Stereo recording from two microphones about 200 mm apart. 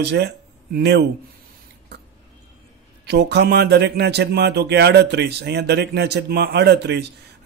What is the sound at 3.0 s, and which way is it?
Speech, 55° right (ahead or behind).